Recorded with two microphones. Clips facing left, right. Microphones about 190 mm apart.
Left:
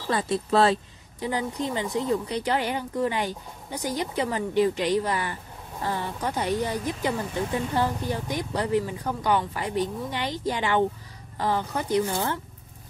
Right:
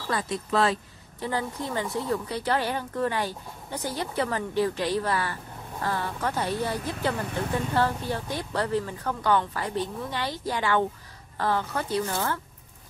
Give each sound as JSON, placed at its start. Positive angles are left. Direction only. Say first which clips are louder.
{"t": 0.1, "sound": "speech", "louder": "left 4 dB", "side_deg": 30}
{"t": 1.2, "sound": "speech", "louder": "left 2 dB", "side_deg": 15}